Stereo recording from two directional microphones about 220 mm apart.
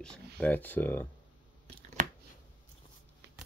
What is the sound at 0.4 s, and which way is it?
Speech, 10° left (ahead or behind).